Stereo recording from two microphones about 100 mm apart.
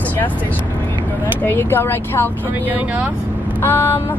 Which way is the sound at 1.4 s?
20° left (ahead or behind).